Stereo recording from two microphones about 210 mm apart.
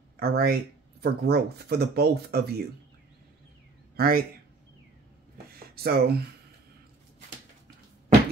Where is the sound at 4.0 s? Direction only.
45° right (ahead or behind).